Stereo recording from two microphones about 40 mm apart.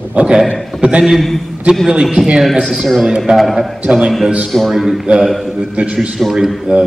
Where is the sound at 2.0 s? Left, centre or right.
Centre.